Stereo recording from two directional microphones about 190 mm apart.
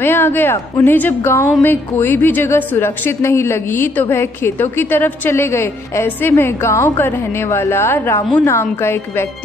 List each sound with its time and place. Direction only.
0.0 s a woman's voice: 10° left (ahead or behind)